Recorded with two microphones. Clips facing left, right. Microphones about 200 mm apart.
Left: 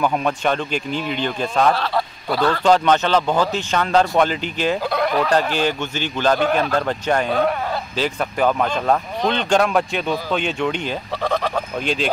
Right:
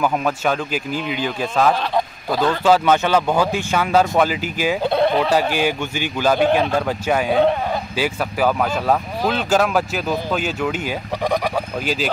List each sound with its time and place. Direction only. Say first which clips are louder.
0.0 s speech: even; 5° right (ahead or behind)
1.7 s speech: right 1 dB; 15° right (ahead or behind)
2.6 s speech: right 1 dB; 5° right (ahead or behind)
4.8 s speech: right 3 dB; 25° right (ahead or behind)
5.3 s speech: right 1 dB; 10° right (ahead or behind)